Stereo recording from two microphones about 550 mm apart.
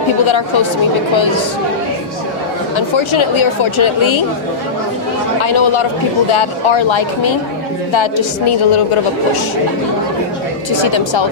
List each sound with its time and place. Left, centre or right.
1.1 s speech: left
3.0 s a woman's voice: left
5.4 s a woman's voice: left
10.7 s speech: left